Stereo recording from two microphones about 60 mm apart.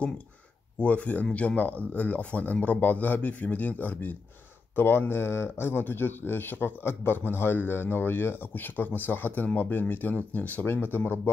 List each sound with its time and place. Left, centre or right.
0.7 s a man's voice: left